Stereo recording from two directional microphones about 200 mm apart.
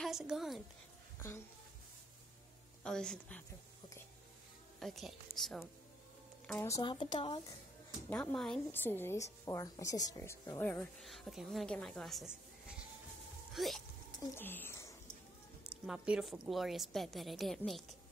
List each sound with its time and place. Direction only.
0.0 s a woman's voice: centre (ahead or behind)
2.8 s a woman's voice: 5° left (ahead or behind)
4.7 s a woman's voice: centre (ahead or behind)
6.8 s speech: 25° left (ahead or behind)
8.1 s a woman's voice: 10° left (ahead or behind)
14.2 s speech: 10° left (ahead or behind)
15.9 s a woman's voice: 5° right (ahead or behind)